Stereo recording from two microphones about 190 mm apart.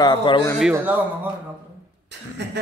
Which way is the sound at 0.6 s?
5° right (ahead or behind).